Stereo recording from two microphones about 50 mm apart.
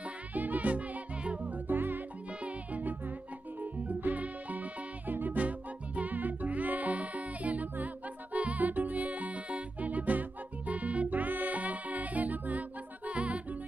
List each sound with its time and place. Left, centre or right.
0.0 s music: right